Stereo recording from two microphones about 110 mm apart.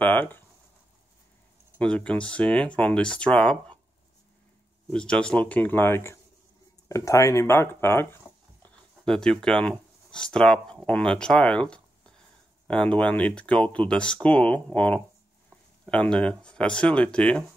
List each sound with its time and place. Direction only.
0.0 s a sound: 15° left (ahead or behind)
1.8 s speech: 10° left (ahead or behind)
4.8 s speech: 10° left (ahead or behind)
8.6 s speech: 5° left (ahead or behind)